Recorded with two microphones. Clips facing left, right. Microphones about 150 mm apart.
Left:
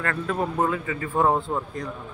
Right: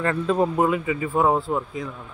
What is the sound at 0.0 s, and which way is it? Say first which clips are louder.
Speech: right 5 dB; 20° right (ahead or behind).